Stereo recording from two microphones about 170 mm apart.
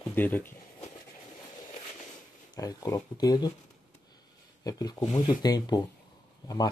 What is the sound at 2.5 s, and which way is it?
Speech, 20° left (ahead or behind).